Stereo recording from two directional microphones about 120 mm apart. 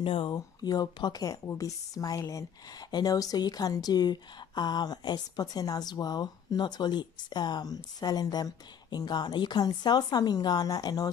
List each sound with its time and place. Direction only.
0.0 s speech: 45° left (ahead or behind)
0.6 s a woman's voice: 35° left (ahead or behind)